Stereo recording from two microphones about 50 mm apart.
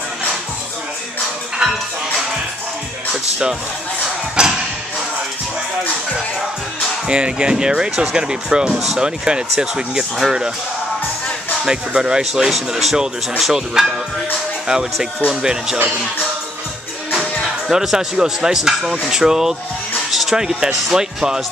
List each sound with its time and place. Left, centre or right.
1.6 s music: centre
4.4 s a sound: centre
7.1 s speech: centre
11.6 s speech: centre
17.6 s speech: centre